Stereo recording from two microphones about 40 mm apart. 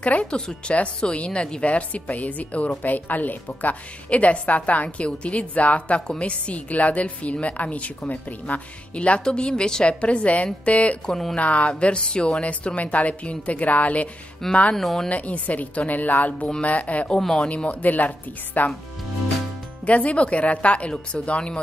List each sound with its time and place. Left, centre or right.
0.0 s a woman's voice: left
1.7 s a woman's voice: left
4.1 s a woman's voice: left
8.9 s a woman's voice: left
9.2 s speech: left
9.8 s a woman's voice: left
11.1 s speech: centre
11.3 s a woman's voice: left
12.4 s a woman's voice: left
14.5 s speech: left
14.8 s speech: centre
15.0 s a woman's voice: left
19.9 s a woman's voice: left